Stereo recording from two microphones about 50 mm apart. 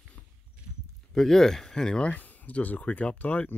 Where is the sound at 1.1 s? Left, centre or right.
Centre.